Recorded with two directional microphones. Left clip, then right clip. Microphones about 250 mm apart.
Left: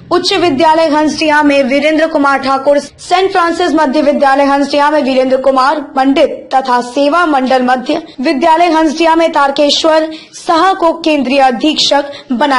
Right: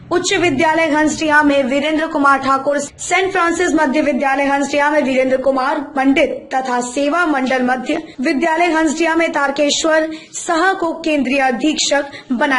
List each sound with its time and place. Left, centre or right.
0.3 s a woman's voice: centre